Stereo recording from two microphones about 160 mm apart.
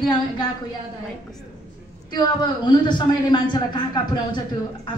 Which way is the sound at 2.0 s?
25° left (ahead or behind).